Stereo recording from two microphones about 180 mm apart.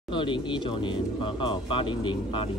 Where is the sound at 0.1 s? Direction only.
25° left (ahead or behind).